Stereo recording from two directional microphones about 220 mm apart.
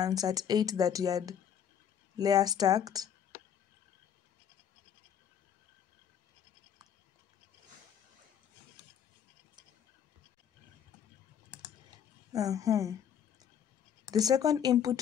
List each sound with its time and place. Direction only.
0.0 s speech: 15° right (ahead or behind)
12.3 s speech: 15° right (ahead or behind)
14.1 s speech: 15° right (ahead or behind)